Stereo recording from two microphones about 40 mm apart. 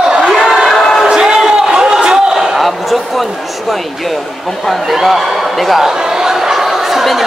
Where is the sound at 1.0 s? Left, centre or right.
Centre.